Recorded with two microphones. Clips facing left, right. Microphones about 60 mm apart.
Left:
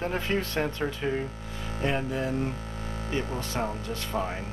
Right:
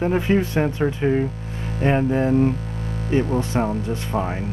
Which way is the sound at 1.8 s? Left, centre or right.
Right.